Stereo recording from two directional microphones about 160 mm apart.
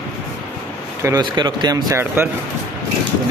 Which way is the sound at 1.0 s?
25° right (ahead or behind).